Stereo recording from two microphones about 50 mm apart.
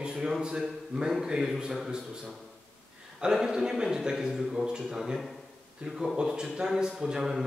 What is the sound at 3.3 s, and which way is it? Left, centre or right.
A man's voice, centre.